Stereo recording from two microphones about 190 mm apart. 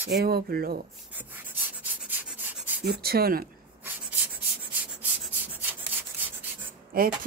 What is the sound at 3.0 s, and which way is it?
Speech, 55° right (ahead or behind).